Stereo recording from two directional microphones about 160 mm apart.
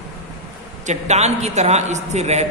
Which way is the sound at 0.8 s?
45° right (ahead or behind).